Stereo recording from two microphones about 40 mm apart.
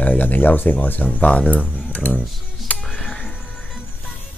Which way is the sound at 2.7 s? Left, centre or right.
Left.